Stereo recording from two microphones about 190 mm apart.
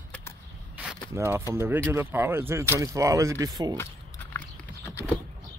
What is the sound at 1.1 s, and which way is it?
Speech, 15° right (ahead or behind).